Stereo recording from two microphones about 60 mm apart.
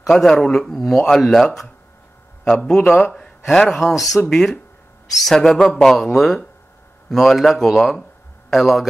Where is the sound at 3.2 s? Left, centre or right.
Centre.